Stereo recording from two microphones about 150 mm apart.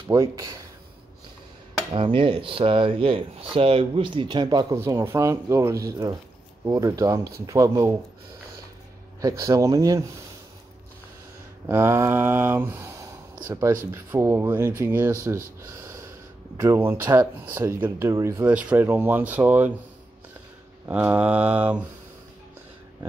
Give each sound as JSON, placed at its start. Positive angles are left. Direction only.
{"t": 0.1, "sound": "speech", "side_deg": -25}
{"t": 2.0, "sound": "speech", "side_deg": -35}
{"t": 4.7, "sound": "speech", "side_deg": -15}
{"t": 9.2, "sound": "speech", "side_deg": -20}
{"t": 11.6, "sound": "speech", "side_deg": -15}
{"t": 20.9, "sound": "speech", "side_deg": -10}